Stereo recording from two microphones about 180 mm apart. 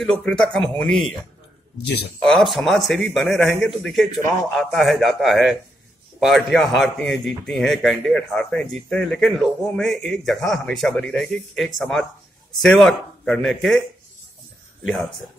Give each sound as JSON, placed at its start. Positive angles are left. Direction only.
{"t": 0.0, "sound": "a man's voice", "side_deg": 5}
{"t": 2.2, "sound": "a man's voice", "side_deg": 0}